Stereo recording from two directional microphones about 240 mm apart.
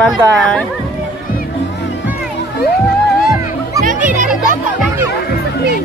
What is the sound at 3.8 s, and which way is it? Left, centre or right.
Music, right.